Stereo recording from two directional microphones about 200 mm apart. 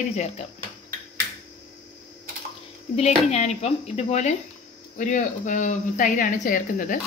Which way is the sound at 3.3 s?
35° left (ahead or behind).